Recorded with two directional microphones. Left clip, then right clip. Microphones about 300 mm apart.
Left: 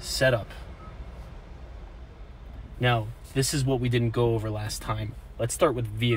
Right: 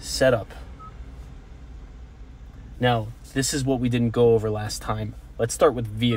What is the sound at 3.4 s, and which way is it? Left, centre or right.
Speech, right.